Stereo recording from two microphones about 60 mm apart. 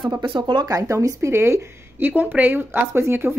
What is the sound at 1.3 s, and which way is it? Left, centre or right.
Speech, right.